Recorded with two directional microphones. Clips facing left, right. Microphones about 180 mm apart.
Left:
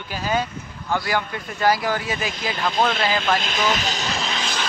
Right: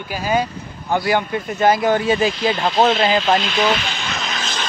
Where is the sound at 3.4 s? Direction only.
45° left (ahead or behind).